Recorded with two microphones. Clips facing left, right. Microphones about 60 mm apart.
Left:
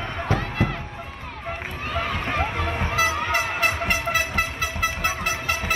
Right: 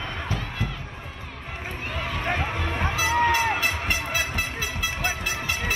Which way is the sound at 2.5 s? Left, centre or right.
Left.